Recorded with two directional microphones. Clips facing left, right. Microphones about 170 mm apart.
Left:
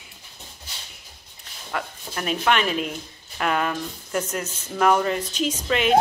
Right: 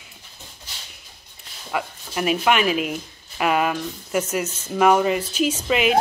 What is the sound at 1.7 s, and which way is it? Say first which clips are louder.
Speech: right 4 dB; 10° right (ahead or behind).